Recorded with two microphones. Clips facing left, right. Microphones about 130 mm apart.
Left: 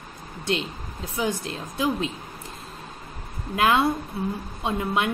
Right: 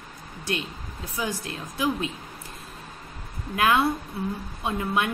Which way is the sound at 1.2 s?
25° left (ahead or behind).